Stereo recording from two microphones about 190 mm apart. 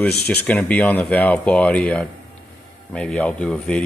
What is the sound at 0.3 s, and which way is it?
Speech, 10° left (ahead or behind).